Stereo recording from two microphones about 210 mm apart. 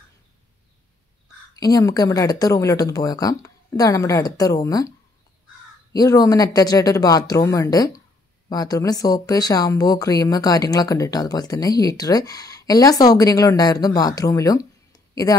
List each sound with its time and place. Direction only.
1.6 s speech: 15° left (ahead or behind)
5.9 s speech: 15° left (ahead or behind)